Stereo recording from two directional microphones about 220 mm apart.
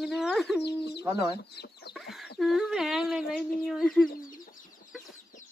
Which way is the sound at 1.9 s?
Centre (ahead or behind).